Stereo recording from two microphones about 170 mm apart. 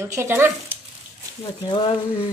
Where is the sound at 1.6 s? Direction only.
30° left (ahead or behind).